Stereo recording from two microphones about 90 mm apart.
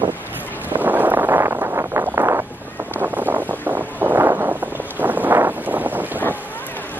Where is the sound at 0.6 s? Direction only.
20° right (ahead or behind).